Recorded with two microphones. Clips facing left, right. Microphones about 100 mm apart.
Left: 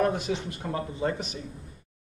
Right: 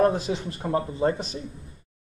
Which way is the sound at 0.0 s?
35° right (ahead or behind).